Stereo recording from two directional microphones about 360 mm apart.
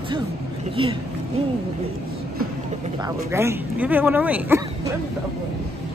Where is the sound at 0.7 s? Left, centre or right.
Centre.